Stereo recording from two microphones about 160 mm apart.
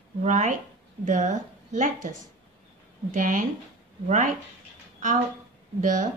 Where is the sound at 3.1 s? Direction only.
55° right (ahead or behind).